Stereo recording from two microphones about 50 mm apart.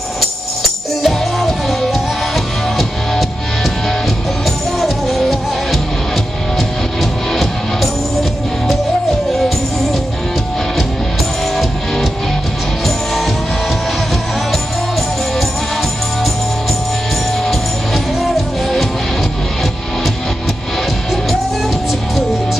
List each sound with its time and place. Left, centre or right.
1.0 s music: centre
4.7 s music: centre
7.0 s music: centre
12.8 s music: centre
17.5 s music: centre